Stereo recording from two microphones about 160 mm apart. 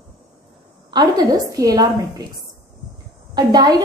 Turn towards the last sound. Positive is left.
turn(degrees=-25)  # may be behind; listen again after turning